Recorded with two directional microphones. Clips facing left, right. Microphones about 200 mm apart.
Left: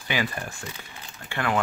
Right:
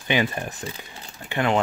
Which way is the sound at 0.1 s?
20° right (ahead or behind).